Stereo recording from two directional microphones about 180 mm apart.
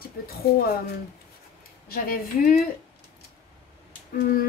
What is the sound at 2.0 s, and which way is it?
Speech, 55° left (ahead or behind).